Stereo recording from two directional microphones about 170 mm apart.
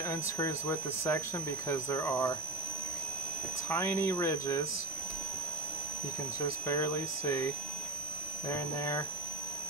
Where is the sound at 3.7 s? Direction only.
15° left (ahead or behind).